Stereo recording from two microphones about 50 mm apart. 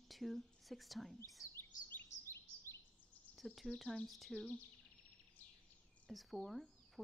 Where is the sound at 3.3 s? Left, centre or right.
Centre.